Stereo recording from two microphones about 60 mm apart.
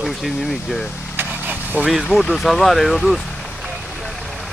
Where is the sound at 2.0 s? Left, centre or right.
Centre.